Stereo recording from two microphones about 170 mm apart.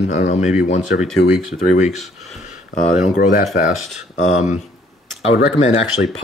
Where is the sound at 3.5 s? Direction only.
55° left (ahead or behind).